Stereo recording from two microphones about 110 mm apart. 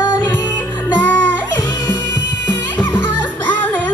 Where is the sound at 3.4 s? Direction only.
15° left (ahead or behind).